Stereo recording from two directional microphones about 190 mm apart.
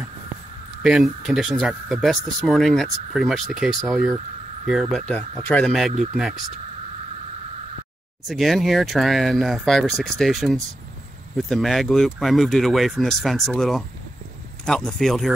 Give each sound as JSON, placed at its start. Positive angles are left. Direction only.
{"t": 0.8, "sound": "speech", "side_deg": 0}
{"t": 8.3, "sound": "speech", "side_deg": 0}